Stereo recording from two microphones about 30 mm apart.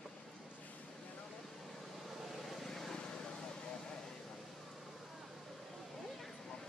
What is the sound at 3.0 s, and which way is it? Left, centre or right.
Vehicle, left.